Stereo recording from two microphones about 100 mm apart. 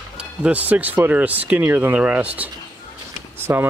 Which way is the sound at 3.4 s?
25° right (ahead or behind).